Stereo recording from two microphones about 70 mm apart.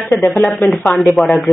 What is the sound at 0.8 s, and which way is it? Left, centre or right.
Speech, left.